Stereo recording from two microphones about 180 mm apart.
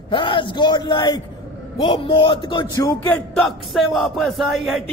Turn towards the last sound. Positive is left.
turn(degrees=0)  # may be behind; listen again after turning